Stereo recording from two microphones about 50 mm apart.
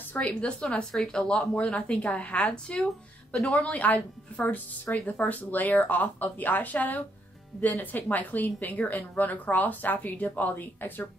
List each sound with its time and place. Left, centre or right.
0.3 s speech: left
3.3 s speech: centre
3.6 s a woman's voice: left